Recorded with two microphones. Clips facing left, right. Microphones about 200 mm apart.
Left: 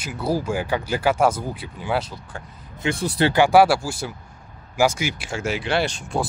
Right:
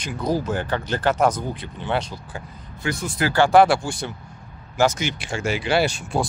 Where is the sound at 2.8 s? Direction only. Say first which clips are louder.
Left 3 dB; 35° left (ahead or behind).